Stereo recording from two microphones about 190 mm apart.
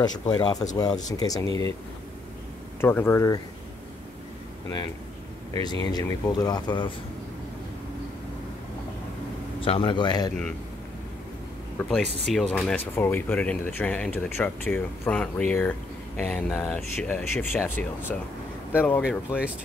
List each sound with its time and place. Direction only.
0.0 s speech: 20° left (ahead or behind)
2.8 s speech: 10° left (ahead or behind)
5.5 s speech: 20° left (ahead or behind)
9.6 s speech: 25° left (ahead or behind)
12.3 s speech: 5° left (ahead or behind)